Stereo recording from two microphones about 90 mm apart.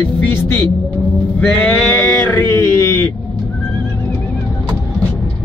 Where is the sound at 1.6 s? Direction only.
20° left (ahead or behind).